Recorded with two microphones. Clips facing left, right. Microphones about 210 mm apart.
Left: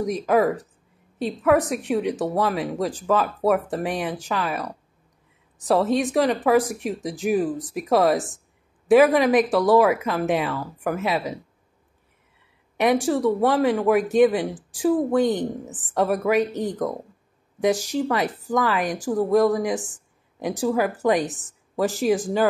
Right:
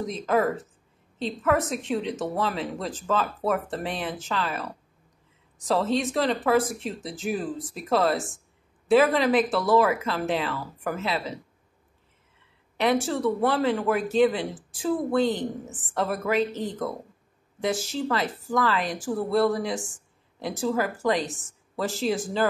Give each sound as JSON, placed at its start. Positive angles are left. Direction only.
{"t": 0.0, "sound": "speech", "side_deg": 10}
{"t": 5.7, "sound": "speech", "side_deg": 15}
{"t": 12.8, "sound": "speech", "side_deg": 15}
{"t": 19.9, "sound": "a sound", "side_deg": 15}
{"t": 21.0, "sound": "speech", "side_deg": 20}